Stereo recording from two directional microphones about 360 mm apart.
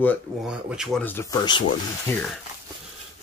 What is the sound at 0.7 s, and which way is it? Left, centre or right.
Speech, centre.